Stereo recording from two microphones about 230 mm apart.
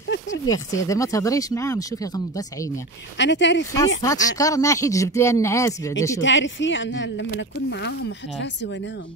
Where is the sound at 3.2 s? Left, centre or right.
Left.